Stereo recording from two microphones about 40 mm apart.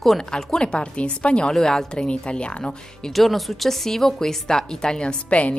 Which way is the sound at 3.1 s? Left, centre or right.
Centre.